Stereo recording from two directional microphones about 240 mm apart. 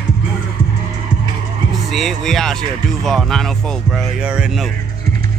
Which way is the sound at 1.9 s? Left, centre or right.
Centre.